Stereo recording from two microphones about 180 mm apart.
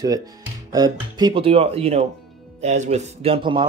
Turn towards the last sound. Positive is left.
turn(degrees=-30)  # may be behind; listen again after turning